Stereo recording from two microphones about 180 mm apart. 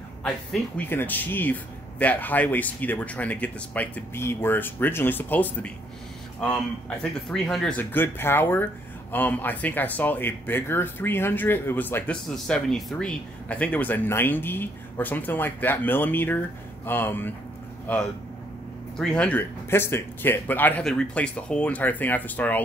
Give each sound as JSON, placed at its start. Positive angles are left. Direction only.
{"t": 0.2, "sound": "speech", "side_deg": 5}